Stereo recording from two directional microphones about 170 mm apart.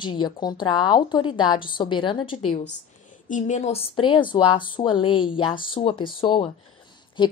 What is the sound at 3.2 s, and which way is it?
A woman's voice, 45° left (ahead or behind).